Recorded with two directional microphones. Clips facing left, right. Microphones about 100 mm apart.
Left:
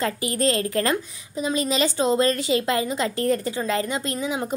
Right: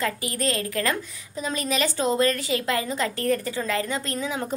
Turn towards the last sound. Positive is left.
turn(degrees=15)  # may be behind; listen again after turning